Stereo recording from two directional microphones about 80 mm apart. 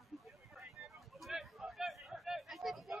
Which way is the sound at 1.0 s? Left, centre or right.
Centre.